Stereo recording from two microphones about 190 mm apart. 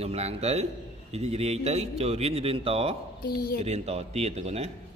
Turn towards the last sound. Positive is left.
turn(degrees=-35)  # may be behind; listen again after turning